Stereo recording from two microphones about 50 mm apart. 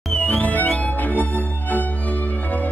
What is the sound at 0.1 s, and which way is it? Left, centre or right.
Music, left.